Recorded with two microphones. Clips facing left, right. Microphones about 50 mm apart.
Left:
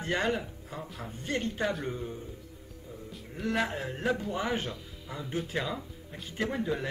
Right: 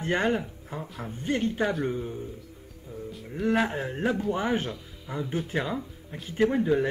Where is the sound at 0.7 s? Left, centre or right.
Centre.